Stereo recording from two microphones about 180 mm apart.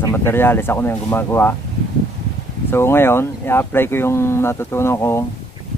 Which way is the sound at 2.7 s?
15° left (ahead or behind).